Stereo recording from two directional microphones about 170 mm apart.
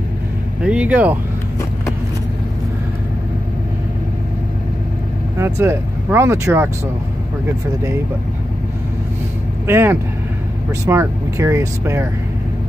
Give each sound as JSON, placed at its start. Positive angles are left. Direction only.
{"t": 0.7, "sound": "speech", "side_deg": -5}
{"t": 5.4, "sound": "speech", "side_deg": -15}
{"t": 9.7, "sound": "speech", "side_deg": -15}